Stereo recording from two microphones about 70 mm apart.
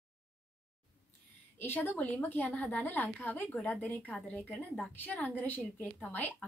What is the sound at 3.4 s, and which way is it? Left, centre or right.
Speech, centre.